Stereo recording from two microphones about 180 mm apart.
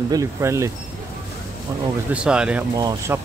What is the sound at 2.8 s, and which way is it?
Speech, 20° right (ahead or behind).